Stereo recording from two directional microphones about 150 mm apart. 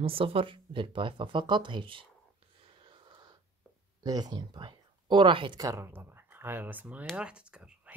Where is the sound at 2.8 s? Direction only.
35° right (ahead or behind).